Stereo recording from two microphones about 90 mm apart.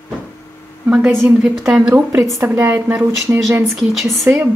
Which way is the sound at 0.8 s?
15° right (ahead or behind).